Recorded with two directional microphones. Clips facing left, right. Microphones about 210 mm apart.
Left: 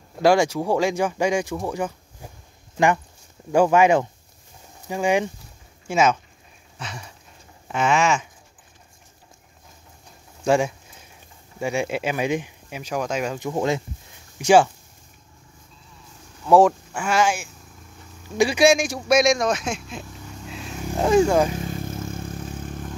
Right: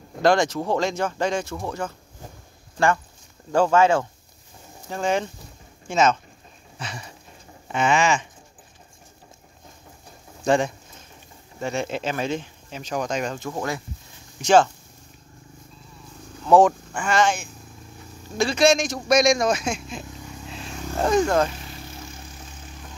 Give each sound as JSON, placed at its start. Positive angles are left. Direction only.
{"t": 0.2, "sound": "speech", "side_deg": 10}
{"t": 6.8, "sound": "a sound", "side_deg": 0}
{"t": 7.6, "sound": "speech", "side_deg": 5}
{"t": 10.4, "sound": "speech", "side_deg": 5}
{"t": 13.4, "sound": "speech", "side_deg": 20}
{"t": 14.4, "sound": "speech", "side_deg": 10}
{"t": 16.4, "sound": "speech", "side_deg": 5}
{"t": 21.6, "sound": "vehicle", "side_deg": 50}